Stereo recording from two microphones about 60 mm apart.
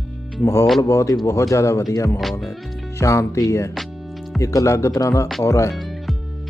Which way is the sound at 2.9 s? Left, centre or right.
Left.